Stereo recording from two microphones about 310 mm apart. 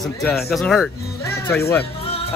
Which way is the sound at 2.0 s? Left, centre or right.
Centre.